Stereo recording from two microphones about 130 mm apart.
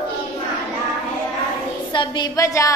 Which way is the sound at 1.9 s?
35° left (ahead or behind).